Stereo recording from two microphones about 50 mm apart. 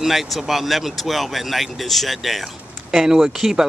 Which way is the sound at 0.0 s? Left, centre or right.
Centre.